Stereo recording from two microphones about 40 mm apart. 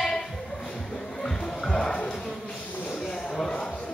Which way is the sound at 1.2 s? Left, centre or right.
Centre.